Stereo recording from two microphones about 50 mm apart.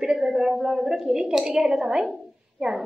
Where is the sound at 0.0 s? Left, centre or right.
Centre.